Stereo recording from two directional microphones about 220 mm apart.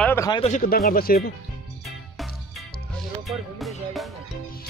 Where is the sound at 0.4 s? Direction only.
35° left (ahead or behind).